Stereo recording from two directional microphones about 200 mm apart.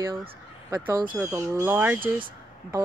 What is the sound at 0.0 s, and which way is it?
Speech, 25° right (ahead or behind).